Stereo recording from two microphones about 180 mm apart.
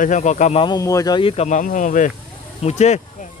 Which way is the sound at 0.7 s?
20° left (ahead or behind).